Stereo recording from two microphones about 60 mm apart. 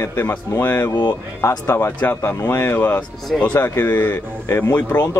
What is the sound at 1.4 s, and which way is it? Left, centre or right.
A man's voice, left.